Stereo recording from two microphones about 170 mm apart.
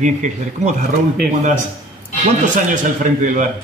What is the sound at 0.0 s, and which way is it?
Speech, 45° right (ahead or behind).